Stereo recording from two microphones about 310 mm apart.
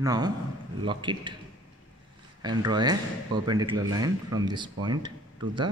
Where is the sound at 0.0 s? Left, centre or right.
Centre.